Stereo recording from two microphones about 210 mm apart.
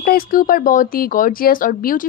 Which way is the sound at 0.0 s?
45° left (ahead or behind).